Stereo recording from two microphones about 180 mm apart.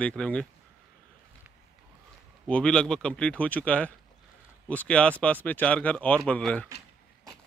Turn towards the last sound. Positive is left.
turn(degrees=5)  # may be behind; listen again after turning